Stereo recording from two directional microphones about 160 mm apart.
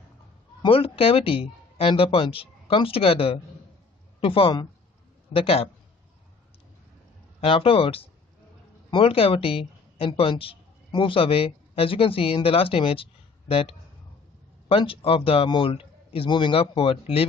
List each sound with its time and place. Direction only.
0.6 s speech: 35° left (ahead or behind)
7.3 s a woman's voice: 35° left (ahead or behind)